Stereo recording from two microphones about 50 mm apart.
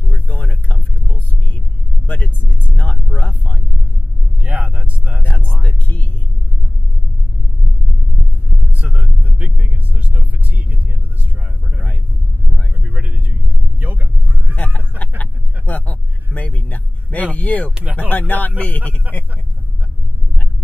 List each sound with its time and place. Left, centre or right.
0.1 s vehicle: left
4.5 s vehicle: right
5.2 s a sound: left
5.6 s music: left
8.7 s vehicle: right
12.8 s vehicle: right
13.7 s vehicle: right
14.5 s a sound: left
17.9 s speech: left